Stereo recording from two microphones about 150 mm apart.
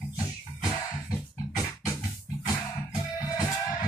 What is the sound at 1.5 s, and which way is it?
Music, 25° left (ahead or behind).